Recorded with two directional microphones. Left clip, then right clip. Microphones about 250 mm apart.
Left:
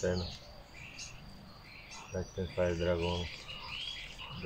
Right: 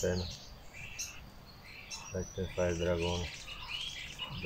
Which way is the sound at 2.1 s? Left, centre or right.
Centre.